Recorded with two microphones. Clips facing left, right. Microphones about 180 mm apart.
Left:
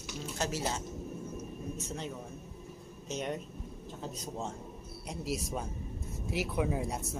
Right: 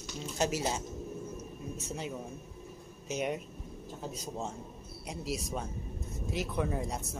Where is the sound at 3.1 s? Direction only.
10° right (ahead or behind).